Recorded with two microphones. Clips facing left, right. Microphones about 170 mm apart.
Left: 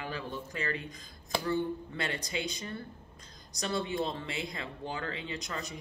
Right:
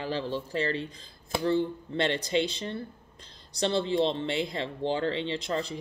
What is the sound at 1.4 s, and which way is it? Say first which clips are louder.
Speech: right 6 dB; 30° right (ahead or behind).